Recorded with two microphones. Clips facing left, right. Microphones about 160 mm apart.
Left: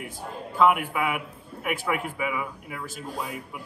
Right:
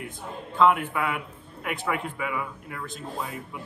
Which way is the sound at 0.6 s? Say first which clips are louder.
Even; 5° left (ahead or behind).